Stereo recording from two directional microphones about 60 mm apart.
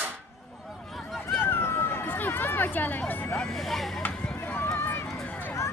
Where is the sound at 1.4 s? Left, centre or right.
Left.